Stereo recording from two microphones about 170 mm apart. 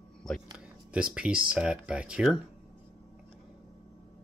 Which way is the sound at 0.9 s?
5° right (ahead or behind).